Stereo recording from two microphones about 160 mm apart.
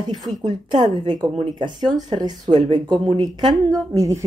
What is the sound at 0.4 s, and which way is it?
Speech, 30° right (ahead or behind).